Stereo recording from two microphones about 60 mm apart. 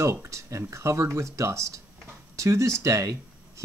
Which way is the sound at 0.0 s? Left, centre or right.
Right.